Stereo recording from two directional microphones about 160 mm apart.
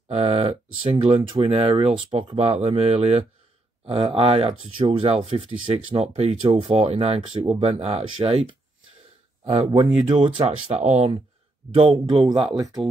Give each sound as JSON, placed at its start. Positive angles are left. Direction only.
{"t": 0.1, "sound": "speech", "side_deg": -40}
{"t": 10.3, "sound": "speech", "side_deg": -45}
{"t": 12.1, "sound": "speech", "side_deg": -30}